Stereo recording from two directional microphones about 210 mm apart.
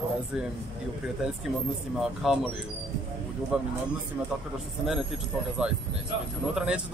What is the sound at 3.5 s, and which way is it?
Speech, 5° right (ahead or behind).